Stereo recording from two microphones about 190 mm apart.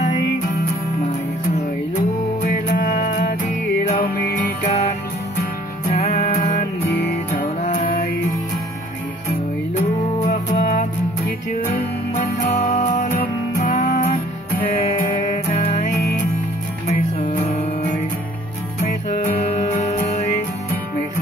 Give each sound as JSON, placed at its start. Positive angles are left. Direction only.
{"t": 2.4, "sound": "music", "side_deg": 45}
{"t": 5.9, "sound": "music", "side_deg": 35}
{"t": 9.8, "sound": "music", "side_deg": 40}
{"t": 12.6, "sound": "music", "side_deg": 40}
{"t": 16.8, "sound": "music", "side_deg": 30}